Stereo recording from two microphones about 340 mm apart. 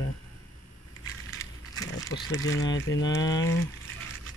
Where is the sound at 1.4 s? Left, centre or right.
Centre.